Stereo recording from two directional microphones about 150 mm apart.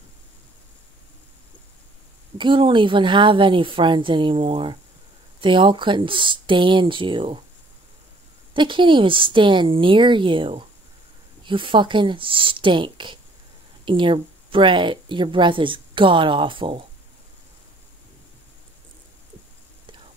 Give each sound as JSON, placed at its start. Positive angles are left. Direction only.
{"t": 2.3, "sound": "a woman's voice", "side_deg": -35}
{"t": 8.5, "sound": "a woman's voice", "side_deg": -35}